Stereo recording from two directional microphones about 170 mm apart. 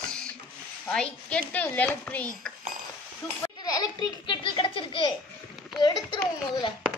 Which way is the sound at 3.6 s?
25° left (ahead or behind).